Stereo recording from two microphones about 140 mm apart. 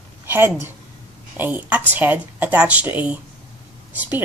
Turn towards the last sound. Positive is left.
turn(degrees=-15)  # may be behind; listen again after turning